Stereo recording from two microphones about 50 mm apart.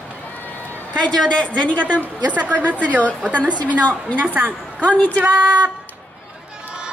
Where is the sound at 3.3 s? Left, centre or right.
Left.